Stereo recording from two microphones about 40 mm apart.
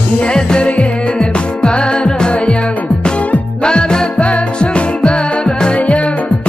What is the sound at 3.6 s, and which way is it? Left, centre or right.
Music, left.